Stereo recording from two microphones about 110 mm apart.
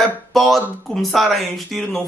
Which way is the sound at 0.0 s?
Centre (ahead or behind).